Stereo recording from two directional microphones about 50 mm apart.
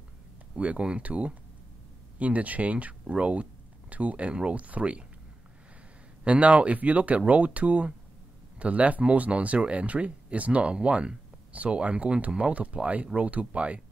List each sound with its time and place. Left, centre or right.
0.6 s speech: right
6.2 s speech: right